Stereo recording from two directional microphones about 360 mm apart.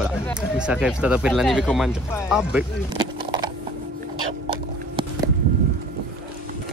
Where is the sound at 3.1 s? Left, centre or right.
Centre.